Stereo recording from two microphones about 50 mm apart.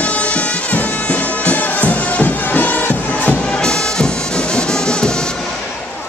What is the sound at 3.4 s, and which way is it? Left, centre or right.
Music, centre.